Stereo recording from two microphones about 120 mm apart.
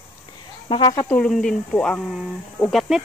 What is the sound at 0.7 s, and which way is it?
Speech, 45° left (ahead or behind).